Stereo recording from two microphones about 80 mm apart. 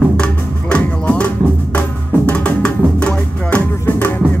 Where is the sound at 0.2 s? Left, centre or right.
Centre.